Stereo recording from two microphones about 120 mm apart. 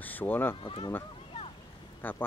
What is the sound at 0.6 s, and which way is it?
Speech, 50° left (ahead or behind).